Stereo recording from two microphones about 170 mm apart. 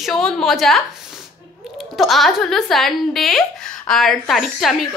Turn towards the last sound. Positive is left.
turn(degrees=0)  # may be behind; listen again after turning